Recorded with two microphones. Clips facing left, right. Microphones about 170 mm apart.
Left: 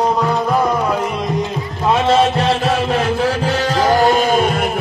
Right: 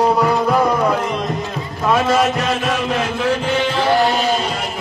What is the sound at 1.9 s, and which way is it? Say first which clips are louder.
Music: left 2 dB; 30° left (ahead or behind).